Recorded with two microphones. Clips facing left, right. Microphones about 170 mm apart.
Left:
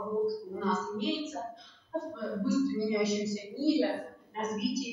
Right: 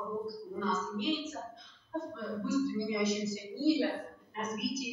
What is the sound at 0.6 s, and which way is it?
Speech, 35° left (ahead or behind).